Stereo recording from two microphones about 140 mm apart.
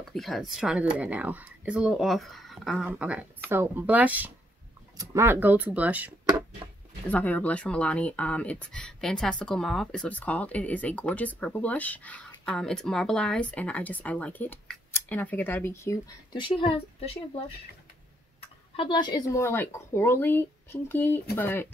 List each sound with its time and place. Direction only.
0.1 s speech: centre (ahead or behind)
7.1 s speech: 10° left (ahead or behind)
16.3 s speech: 35° left (ahead or behind)
18.8 s speech: 35° left (ahead or behind); by 21.6 s 15° left (ahead or behind)